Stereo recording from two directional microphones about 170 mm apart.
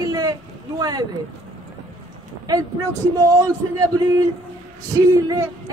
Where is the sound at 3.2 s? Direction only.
20° right (ahead or behind).